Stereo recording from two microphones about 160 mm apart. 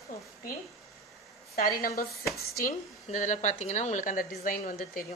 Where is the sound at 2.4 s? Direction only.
70° left (ahead or behind).